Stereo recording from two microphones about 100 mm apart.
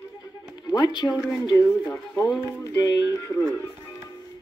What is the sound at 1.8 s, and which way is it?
Speech, 30° left (ahead or behind).